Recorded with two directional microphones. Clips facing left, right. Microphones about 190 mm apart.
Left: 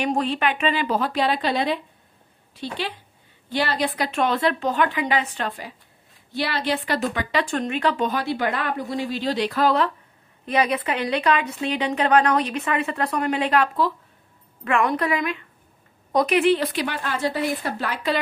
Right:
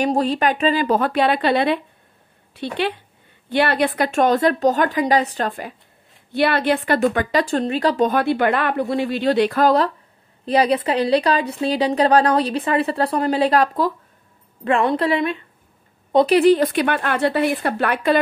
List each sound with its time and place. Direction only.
0.0 s speech: 40° right (ahead or behind)
6.3 s speech: 55° right (ahead or behind); by 8.2 s 40° right (ahead or behind)
8.2 s speech: 60° right (ahead or behind)
10.4 s speech: 35° right (ahead or behind)
14.6 s speech: 30° right (ahead or behind); by 18.2 s 60° right (ahead or behind)